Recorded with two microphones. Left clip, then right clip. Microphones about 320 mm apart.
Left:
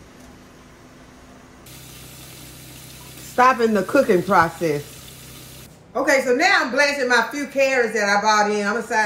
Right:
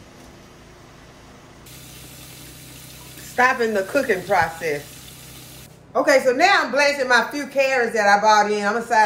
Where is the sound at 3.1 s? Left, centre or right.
Centre.